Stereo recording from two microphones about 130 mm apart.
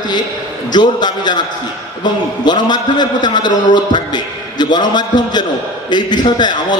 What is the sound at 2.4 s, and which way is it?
A man's voice, 35° left (ahead or behind).